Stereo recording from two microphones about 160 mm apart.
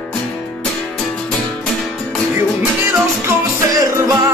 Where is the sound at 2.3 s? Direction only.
15° right (ahead or behind).